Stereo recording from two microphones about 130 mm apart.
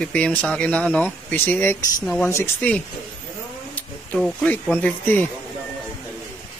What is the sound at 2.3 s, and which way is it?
Speech, 15° left (ahead or behind).